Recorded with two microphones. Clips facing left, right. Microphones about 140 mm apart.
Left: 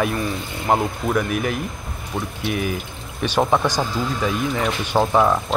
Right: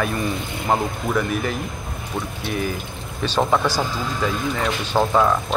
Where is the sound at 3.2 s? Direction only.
15° left (ahead or behind).